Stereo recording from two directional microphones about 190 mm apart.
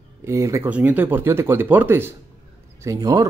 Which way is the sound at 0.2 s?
15° right (ahead or behind).